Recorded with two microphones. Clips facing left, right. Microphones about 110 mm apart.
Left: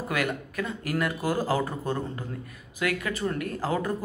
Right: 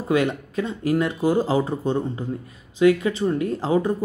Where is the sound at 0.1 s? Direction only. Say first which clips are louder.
Right 9 dB; 25° right (ahead or behind).